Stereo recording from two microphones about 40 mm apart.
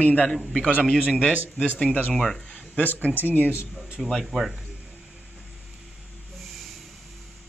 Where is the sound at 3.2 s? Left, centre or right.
Left.